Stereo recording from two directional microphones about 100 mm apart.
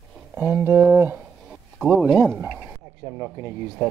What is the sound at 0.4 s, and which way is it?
Speech, 20° right (ahead or behind).